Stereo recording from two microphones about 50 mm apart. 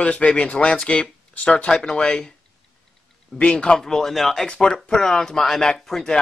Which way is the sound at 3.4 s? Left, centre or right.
Centre.